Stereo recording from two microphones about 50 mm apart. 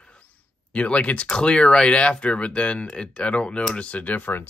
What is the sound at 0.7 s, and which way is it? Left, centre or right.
Speech, left.